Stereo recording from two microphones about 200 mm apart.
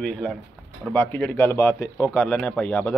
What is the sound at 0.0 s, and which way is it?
Speech, 5° left (ahead or behind).